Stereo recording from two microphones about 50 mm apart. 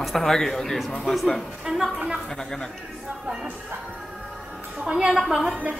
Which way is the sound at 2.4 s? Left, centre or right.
Centre.